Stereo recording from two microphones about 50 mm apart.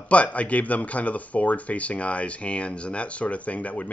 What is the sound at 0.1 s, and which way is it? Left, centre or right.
Speech, left.